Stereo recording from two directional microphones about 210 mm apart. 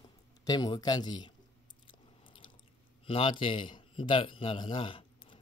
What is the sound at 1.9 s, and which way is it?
Biting, 25° left (ahead or behind).